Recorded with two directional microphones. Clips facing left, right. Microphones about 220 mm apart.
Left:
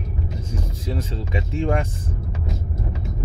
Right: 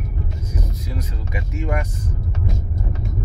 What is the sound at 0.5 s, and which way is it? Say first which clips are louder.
Speech: left 3 dB; 30° left (ahead or behind).